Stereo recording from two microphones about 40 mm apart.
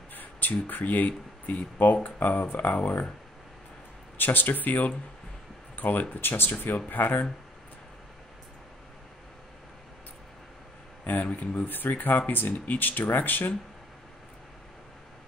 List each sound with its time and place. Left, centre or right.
0.1 s speech: left
4.2 s speech: left
11.2 s speech: left